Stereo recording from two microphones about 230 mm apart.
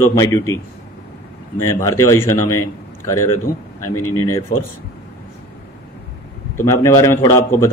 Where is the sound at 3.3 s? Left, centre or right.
Left.